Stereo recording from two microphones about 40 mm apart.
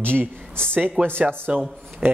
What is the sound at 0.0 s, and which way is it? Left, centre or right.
Speech, right.